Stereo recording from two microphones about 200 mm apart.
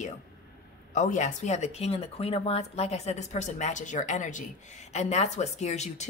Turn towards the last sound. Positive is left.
turn(degrees=35)  # may be behind; listen again after turning